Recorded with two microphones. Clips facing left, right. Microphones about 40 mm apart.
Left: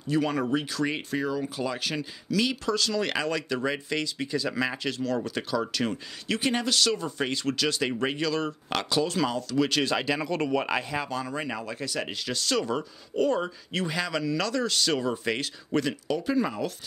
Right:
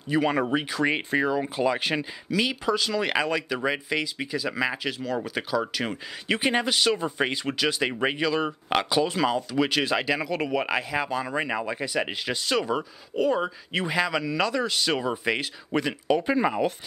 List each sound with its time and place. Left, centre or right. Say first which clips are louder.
0.1 s speech: right 2 dB; centre
6.2 s speech: right 3 dB; right
16.2 s speech: right 3 dB; right